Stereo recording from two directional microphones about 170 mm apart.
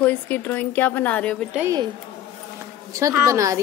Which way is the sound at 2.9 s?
15° right (ahead or behind).